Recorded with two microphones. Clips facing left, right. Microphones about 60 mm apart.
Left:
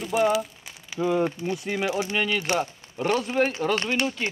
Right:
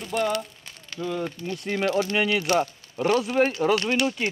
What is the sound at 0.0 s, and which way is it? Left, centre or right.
Speech, centre.